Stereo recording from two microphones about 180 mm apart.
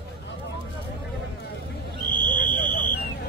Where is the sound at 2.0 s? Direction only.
25° right (ahead or behind).